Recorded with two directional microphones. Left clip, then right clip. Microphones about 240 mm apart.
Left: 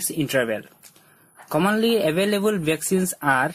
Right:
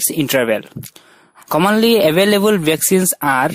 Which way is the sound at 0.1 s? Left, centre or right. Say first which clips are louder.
Right 7 dB; right.